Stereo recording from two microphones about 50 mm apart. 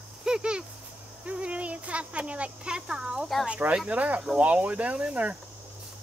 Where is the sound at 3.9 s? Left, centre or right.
Right.